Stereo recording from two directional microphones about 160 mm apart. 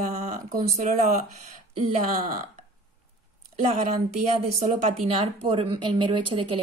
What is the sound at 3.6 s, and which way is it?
A woman's voice, 40° right (ahead or behind).